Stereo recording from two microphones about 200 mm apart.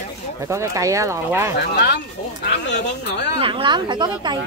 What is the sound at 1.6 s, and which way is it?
Speech, 55° left (ahead or behind).